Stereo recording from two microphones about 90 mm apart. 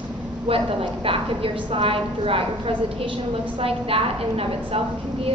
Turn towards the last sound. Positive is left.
turn(degrees=-90)